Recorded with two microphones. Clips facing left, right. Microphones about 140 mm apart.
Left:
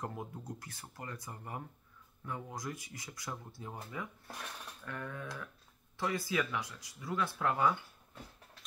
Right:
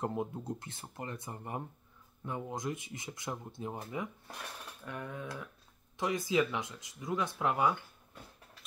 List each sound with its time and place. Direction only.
0.0 s speech: 25° right (ahead or behind)